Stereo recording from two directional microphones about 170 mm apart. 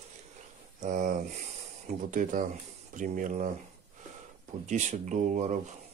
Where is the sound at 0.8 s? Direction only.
50° right (ahead or behind).